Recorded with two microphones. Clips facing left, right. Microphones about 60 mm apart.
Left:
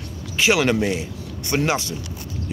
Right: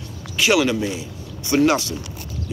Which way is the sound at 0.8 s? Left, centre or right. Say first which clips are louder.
Left 3 dB; left.